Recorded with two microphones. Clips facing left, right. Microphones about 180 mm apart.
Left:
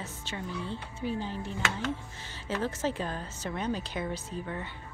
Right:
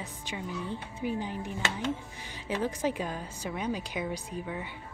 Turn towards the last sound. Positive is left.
turn(degrees=-10)  # may be behind; listen again after turning